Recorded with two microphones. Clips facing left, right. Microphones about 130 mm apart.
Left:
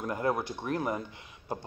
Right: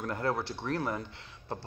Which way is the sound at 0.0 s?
15° left (ahead or behind).